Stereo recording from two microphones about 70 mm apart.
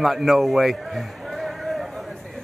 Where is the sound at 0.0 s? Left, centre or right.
Centre.